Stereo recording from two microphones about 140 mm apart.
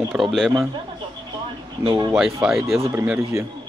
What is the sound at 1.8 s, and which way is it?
Speech, 40° right (ahead or behind).